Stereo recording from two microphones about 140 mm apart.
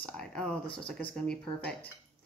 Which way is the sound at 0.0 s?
5° left (ahead or behind).